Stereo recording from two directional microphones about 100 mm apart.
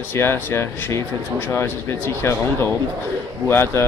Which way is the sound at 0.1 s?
25° left (ahead or behind).